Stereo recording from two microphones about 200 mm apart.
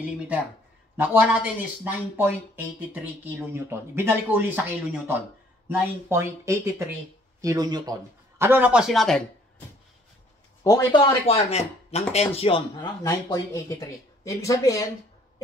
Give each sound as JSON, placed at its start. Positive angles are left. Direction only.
{"t": 0.9, "sound": "speech", "side_deg": -10}
{"t": 10.6, "sound": "speech", "side_deg": 15}
{"t": 11.0, "sound": "speech", "side_deg": 30}
{"t": 13.0, "sound": "speech", "side_deg": 15}